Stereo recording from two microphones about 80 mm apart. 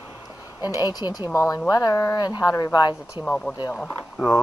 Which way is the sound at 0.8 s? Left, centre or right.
Left.